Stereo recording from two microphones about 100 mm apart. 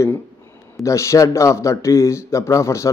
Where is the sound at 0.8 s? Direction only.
30° left (ahead or behind).